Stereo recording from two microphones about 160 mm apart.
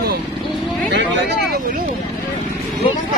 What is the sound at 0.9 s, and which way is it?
Speech, 90° right.